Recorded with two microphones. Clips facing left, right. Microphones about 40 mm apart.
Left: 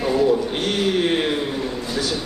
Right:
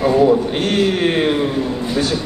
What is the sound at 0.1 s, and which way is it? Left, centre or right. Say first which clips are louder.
A man's voice: right 2 dB; right.